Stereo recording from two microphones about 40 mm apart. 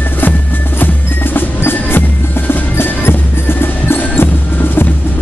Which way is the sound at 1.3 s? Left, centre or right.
Left.